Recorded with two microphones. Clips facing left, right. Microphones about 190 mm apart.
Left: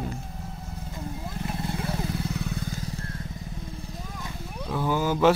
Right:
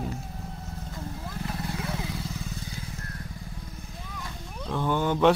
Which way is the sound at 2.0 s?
60° left (ahead or behind).